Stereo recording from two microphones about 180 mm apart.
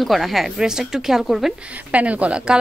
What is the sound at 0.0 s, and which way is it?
Speech, centre (ahead or behind).